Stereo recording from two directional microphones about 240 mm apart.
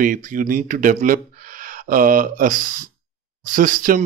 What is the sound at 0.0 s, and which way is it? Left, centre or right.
Speech, right.